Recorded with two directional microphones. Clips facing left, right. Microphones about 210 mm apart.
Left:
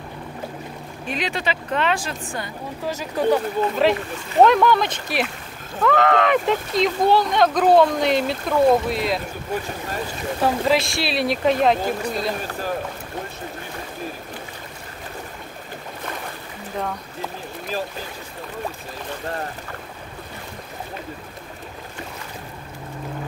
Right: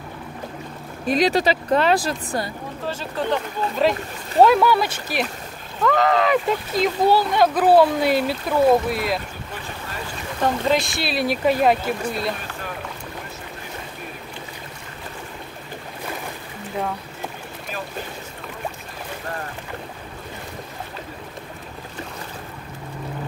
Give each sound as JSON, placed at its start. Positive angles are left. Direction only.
{"t": 1.0, "sound": "speech", "side_deg": -40}
{"t": 2.8, "sound": "speech", "side_deg": 10}
{"t": 4.4, "sound": "speech", "side_deg": -5}
{"t": 10.4, "sound": "speech", "side_deg": 0}